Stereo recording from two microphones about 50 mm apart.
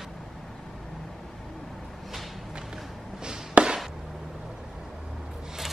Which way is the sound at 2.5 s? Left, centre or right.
Centre.